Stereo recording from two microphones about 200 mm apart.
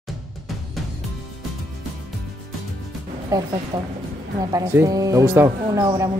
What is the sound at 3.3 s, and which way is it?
Speech, 20° right (ahead or behind).